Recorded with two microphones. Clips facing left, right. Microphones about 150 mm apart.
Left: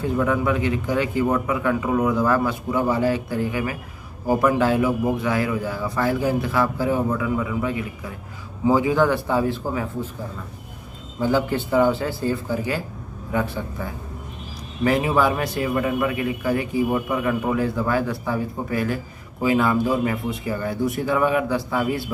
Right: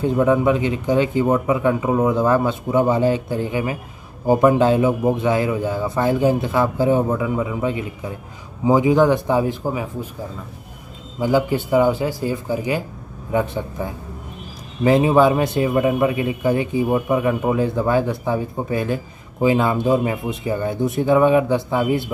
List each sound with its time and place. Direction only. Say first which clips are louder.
0.0 s a man's voice: right 5 dB; 20° right (ahead or behind)
11.1 s a man's voice: right 3 dB; 15° right (ahead or behind)